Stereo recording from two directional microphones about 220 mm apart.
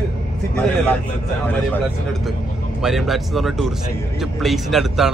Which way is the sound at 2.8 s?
Centre (ahead or behind).